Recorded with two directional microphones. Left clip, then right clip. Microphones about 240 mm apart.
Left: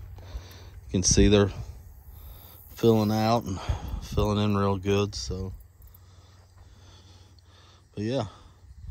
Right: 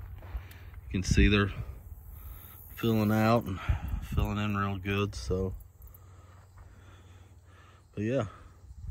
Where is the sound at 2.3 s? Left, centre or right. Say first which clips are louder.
Left 7 dB; centre.